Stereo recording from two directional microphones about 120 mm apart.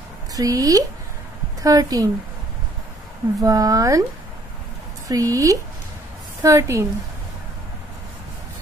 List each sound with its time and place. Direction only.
0.3 s a woman's voice: 30° right (ahead or behind)
3.3 s speech: 30° right (ahead or behind)
5.0 s speech: 30° right (ahead or behind)